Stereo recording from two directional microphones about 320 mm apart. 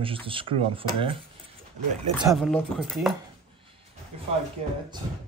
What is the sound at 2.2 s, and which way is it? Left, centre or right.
Speech, centre.